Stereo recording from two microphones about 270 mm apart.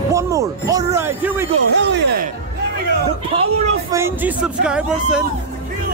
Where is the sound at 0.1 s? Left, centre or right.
Centre.